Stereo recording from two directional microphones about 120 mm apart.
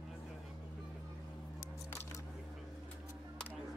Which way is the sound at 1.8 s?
20° left (ahead or behind).